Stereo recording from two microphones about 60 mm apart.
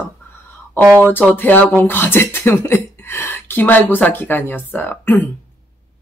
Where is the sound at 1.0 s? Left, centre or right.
Left.